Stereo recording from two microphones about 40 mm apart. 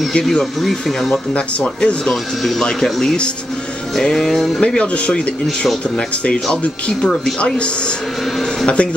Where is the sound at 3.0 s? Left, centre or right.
Left.